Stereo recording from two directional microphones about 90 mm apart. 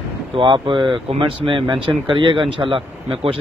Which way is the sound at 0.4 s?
75° right (ahead or behind).